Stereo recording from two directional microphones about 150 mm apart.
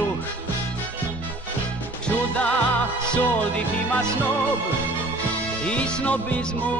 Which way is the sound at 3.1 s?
10° left (ahead or behind).